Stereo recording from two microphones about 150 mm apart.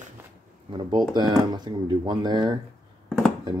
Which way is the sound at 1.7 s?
30° right (ahead or behind).